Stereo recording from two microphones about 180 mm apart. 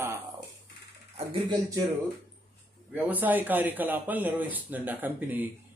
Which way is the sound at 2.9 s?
10° right (ahead or behind).